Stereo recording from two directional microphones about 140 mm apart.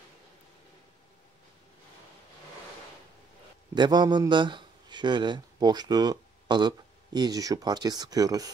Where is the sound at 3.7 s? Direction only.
30° right (ahead or behind).